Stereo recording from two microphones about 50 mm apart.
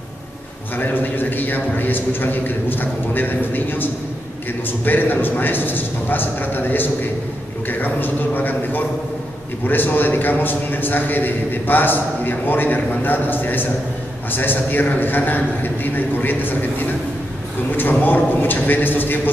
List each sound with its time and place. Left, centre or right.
0.7 s a man's voice: left
18.0 s a man's voice: left